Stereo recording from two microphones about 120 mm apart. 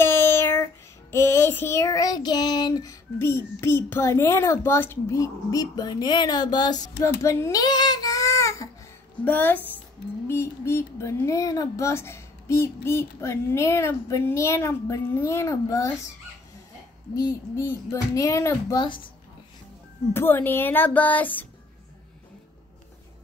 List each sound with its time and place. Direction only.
0.0 s child singing: 20° left (ahead or behind)
9.2 s speech: 15° left (ahead or behind)
10.2 s child singing: 20° left (ahead or behind)
17.1 s child singing: 30° left (ahead or behind)
20.1 s speech: 20° left (ahead or behind)